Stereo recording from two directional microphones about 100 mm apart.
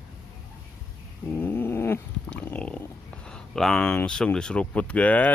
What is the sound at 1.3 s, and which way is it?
Cat, 20° left (ahead or behind).